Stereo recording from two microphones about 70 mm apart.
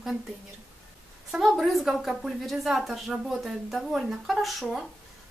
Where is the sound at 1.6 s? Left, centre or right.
Centre.